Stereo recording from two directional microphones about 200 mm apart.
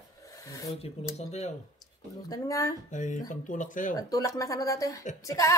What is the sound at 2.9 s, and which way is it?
Speech, 40° left (ahead or behind).